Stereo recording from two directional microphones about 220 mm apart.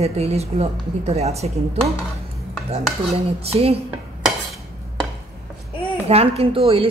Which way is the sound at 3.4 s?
25° right (ahead or behind).